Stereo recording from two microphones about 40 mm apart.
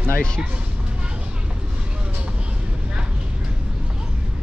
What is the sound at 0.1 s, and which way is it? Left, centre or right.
Speech, left.